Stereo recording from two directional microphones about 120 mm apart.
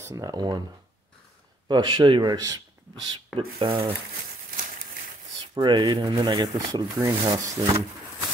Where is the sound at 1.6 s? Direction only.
40° right (ahead or behind).